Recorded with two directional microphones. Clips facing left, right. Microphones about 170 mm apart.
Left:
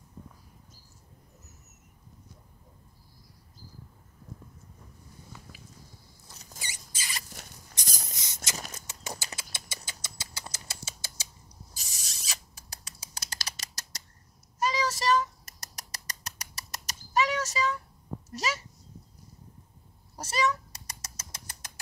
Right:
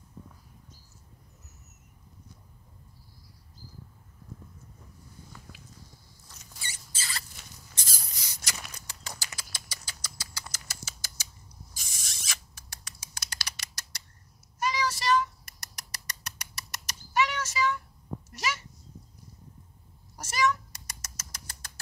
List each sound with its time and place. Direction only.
7.0 s rodents: 15° left (ahead or behind)
7.2 s rodents: 50° left (ahead or behind)
7.7 s a sound: 15° left (ahead or behind)
8.1 s mechanisms: 20° left (ahead or behind)
8.7 s clip-clop: 20° left (ahead or behind)
9.2 s rodents: 25° left (ahead or behind)
14.6 s a sound: 40° left (ahead or behind)
20.2 s bird: 35° left (ahead or behind)